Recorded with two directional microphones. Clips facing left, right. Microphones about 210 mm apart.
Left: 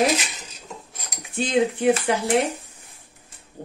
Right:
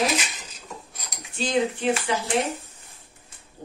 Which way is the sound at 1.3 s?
55° left (ahead or behind).